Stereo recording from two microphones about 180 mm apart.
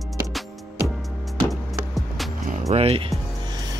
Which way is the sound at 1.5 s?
Centre (ahead or behind).